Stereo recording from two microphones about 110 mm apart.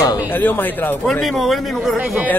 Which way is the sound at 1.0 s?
5° left (ahead or behind).